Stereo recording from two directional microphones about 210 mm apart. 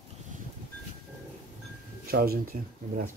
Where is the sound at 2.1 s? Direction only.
45° right (ahead or behind).